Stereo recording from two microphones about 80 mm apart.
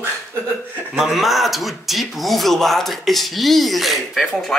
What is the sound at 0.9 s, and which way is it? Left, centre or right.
A man's voice, centre.